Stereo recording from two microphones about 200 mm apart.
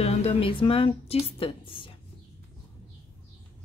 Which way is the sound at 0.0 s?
30° left (ahead or behind).